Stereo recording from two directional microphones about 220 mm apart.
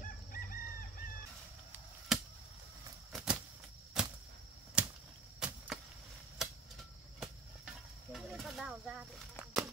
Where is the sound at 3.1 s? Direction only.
5° right (ahead or behind).